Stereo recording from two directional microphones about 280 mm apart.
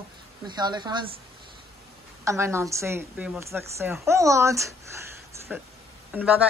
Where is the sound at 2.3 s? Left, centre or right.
Centre.